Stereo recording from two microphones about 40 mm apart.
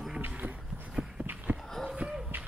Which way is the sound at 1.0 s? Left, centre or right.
Right.